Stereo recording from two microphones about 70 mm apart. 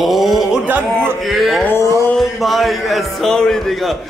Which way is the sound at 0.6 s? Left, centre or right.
Right.